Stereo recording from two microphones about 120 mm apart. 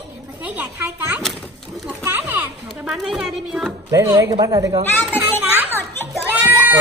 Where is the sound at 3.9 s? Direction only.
25° right (ahead or behind).